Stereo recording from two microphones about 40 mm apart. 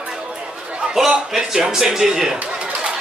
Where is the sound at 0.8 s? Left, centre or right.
Centre.